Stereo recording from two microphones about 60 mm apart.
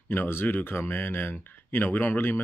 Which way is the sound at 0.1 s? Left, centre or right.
Left.